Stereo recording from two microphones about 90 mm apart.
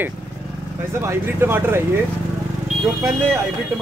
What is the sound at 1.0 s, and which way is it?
Speech, 30° right (ahead or behind).